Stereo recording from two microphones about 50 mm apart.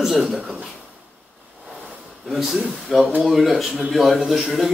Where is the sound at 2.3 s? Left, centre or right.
Centre.